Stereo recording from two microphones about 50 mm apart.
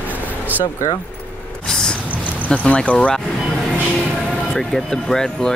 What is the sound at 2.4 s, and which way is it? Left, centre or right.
Speech, left.